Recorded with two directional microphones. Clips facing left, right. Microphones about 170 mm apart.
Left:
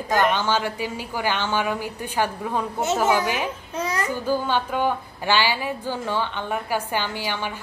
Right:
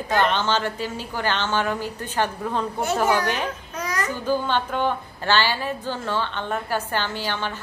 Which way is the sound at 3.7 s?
25° left (ahead or behind).